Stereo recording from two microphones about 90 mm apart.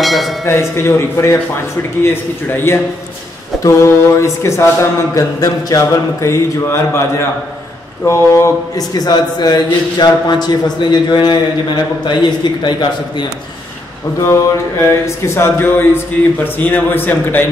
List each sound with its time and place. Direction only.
0.0 s speech: centre (ahead or behind)
0.5 s speech: 30° left (ahead or behind)
8.7 s a man's voice: 45° left (ahead or behind)
14.2 s speech: 30° left (ahead or behind)